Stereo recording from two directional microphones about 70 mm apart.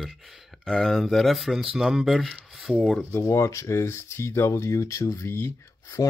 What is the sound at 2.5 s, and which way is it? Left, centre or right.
Speech, centre.